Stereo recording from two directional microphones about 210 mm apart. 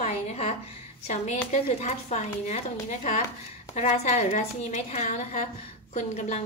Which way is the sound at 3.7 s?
30° left (ahead or behind).